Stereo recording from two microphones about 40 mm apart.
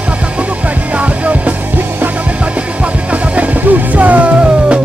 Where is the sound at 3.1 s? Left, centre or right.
Right.